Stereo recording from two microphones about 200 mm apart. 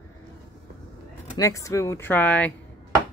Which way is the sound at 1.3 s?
15° left (ahead or behind).